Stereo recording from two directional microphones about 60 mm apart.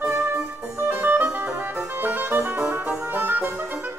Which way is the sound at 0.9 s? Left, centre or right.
Right.